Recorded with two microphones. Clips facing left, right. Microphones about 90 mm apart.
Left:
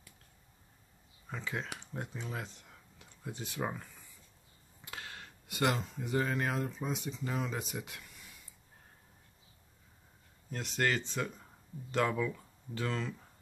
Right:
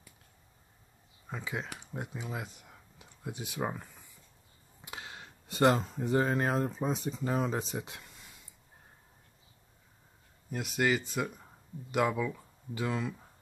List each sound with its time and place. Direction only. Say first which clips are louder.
1.3 s speech: right 1 dB; 15° right (ahead or behind)
4.8 s a sound: right 1 dB; 20° right (ahead or behind)
5.5 s speech: right 6 dB; 35° right (ahead or behind)
10.5 s speech: right 3 dB; 10° right (ahead or behind)